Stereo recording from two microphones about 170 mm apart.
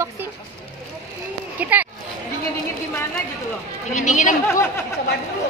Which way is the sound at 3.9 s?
45° left (ahead or behind).